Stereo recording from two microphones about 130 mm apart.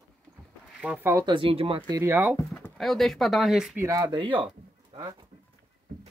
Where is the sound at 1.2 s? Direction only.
40° right (ahead or behind).